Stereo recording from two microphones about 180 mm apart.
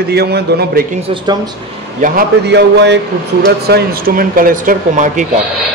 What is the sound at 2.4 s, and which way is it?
Speech, 70° right (ahead or behind).